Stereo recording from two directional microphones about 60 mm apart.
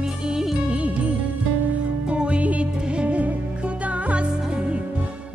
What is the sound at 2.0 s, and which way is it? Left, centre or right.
Music, centre.